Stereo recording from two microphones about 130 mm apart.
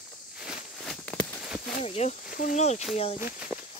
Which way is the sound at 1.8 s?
55° left (ahead or behind).